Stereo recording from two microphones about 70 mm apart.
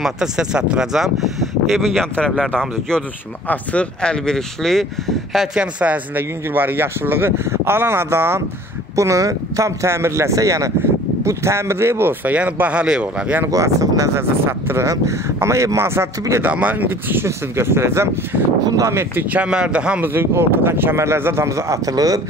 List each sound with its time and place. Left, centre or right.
0.0 s speech: centre
1.7 s speech: centre
3.4 s speech: centre
6.1 s speech: right
8.9 s speech: right
12.3 s speech: right
13.5 s speech: right
14.4 s speech: right
14.9 s speech: right
16.4 s speech: right
19.3 s speech: centre
20.0 s speech: right